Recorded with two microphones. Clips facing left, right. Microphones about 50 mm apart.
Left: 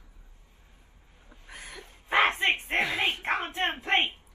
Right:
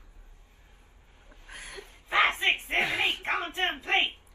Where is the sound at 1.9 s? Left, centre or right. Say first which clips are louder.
Left 1 dB; left.